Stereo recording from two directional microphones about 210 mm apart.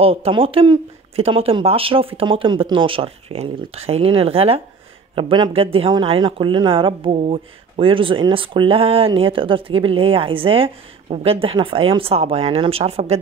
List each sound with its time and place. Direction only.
0.0 s speech: 25° right (ahead or behind)